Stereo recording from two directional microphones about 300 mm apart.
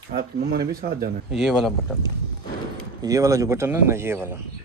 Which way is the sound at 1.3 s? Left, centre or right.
Centre.